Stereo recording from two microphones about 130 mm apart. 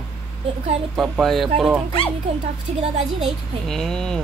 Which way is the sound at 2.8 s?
55° right (ahead or behind).